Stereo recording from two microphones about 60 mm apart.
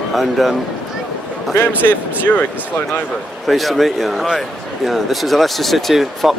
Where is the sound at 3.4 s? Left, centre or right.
Centre.